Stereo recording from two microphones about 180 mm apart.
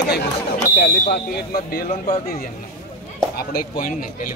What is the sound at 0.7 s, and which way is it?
Speech, 45° left (ahead or behind).